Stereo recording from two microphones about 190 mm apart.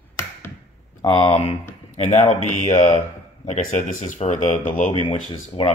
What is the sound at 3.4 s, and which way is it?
Speech, 40° left (ahead or behind).